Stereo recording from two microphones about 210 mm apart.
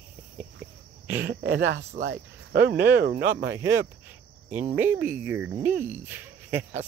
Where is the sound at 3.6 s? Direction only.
15° right (ahead or behind).